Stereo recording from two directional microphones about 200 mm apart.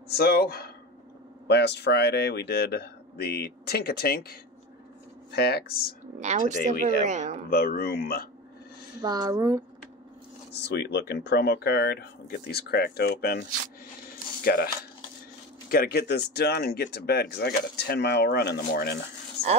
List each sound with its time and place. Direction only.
0.1 s speech: 50° left (ahead or behind)
6.1 s speech: 35° right (ahead or behind)
7.4 s speech: 50° left (ahead or behind)
9.0 s a woman's voice: 20° right (ahead or behind)
10.5 s speech: 55° left (ahead or behind)
15.7 s speech: 50° left (ahead or behind)
19.4 s a sound: 55° left (ahead or behind)